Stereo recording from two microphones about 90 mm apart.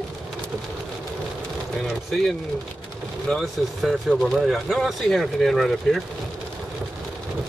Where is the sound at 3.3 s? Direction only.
Centre (ahead or behind).